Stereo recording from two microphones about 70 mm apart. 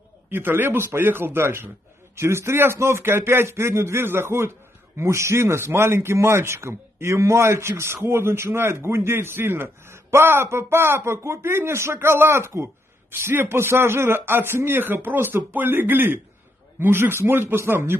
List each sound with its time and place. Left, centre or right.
0.3 s speech: right